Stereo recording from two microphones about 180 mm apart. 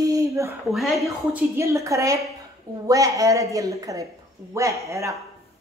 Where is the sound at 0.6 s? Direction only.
Centre (ahead or behind).